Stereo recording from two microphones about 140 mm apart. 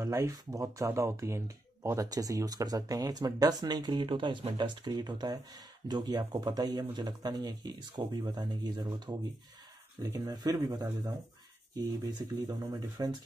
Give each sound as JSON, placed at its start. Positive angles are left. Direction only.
{"t": 0.0, "sound": "speech", "side_deg": -20}